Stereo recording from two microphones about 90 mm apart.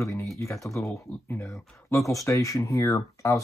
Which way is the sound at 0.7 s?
35° left (ahead or behind).